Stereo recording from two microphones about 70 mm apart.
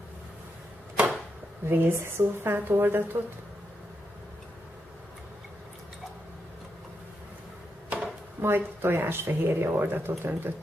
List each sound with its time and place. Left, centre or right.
1.7 s a woman's voice: right
7.9 s speech: right